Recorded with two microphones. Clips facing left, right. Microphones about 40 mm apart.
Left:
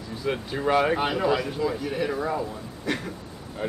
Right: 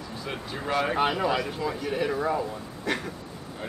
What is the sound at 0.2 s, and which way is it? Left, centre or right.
Speech, centre.